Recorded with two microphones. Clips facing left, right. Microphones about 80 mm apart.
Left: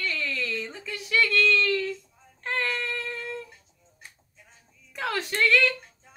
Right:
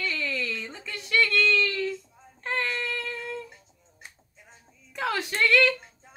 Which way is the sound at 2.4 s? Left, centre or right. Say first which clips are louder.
Even; centre.